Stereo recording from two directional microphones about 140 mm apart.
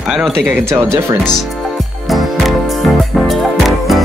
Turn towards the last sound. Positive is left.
turn(degrees=0)  # may be behind; listen again after turning